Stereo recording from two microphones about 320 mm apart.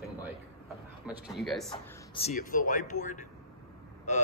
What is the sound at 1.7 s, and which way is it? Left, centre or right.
Speech, centre.